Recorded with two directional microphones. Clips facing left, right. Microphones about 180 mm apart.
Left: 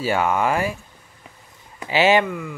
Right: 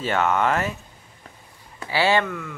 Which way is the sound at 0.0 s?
10° left (ahead or behind).